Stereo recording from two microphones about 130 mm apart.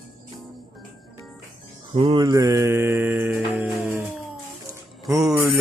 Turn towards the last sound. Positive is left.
turn(degrees=0)  # may be behind; listen again after turning